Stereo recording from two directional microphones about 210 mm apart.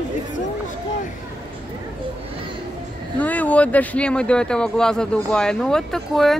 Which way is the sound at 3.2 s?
10° left (ahead or behind).